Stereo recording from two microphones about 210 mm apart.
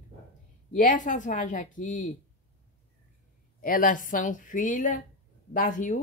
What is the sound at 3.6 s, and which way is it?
Speech, 40° left (ahead or behind).